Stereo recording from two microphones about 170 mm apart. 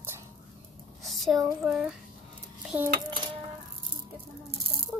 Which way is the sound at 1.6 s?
5° right (ahead or behind).